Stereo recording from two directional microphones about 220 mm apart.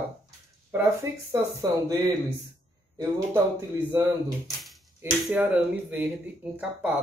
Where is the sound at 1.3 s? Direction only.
15° right (ahead or behind).